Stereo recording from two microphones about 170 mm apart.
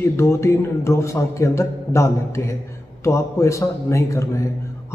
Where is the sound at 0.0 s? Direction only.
15° left (ahead or behind).